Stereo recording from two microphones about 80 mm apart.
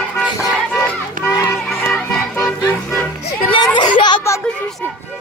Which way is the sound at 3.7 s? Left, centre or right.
Left.